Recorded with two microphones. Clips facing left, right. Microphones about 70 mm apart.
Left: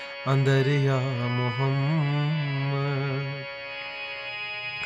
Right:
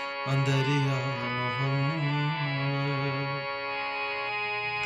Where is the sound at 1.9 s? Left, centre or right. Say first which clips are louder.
Left 2 dB; left.